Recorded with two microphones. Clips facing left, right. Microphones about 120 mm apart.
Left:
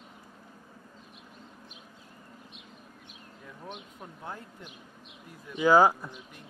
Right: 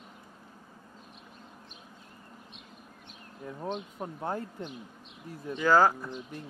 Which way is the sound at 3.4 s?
40° right (ahead or behind).